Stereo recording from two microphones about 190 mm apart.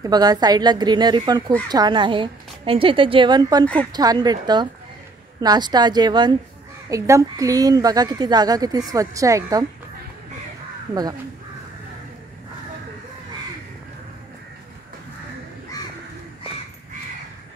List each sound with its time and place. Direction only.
0.0 s a woman's voice: 20° right (ahead or behind)